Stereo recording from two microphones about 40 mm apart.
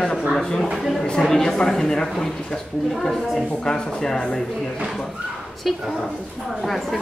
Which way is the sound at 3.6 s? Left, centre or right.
Centre.